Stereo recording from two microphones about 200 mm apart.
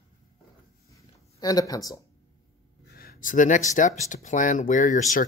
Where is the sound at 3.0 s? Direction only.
45° left (ahead or behind).